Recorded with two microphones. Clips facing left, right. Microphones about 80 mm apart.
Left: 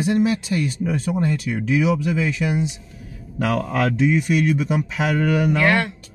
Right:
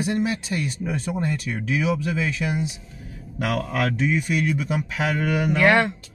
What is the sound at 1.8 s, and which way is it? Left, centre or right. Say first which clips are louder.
Speech: left 3 dB; left.